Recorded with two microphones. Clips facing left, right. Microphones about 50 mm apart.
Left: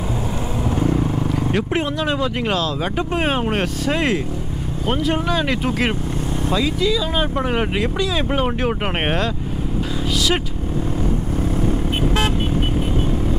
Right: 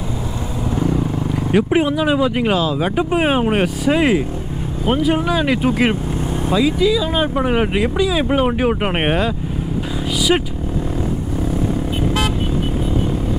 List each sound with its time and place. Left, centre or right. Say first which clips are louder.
1.2 s speech: right 3 dB; centre